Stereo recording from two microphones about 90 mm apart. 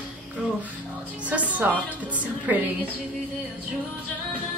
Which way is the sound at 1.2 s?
15° right (ahead or behind).